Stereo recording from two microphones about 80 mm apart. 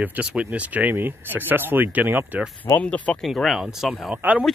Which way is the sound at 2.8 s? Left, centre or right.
Centre.